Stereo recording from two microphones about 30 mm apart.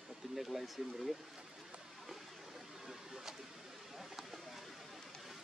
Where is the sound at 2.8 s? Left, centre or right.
Centre.